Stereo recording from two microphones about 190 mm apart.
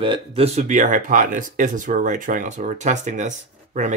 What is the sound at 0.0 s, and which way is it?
Speech, 30° right (ahead or behind).